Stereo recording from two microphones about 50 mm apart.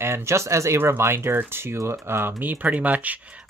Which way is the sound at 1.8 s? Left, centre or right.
Right.